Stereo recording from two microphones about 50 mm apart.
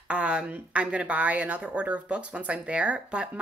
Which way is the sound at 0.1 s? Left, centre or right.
Right.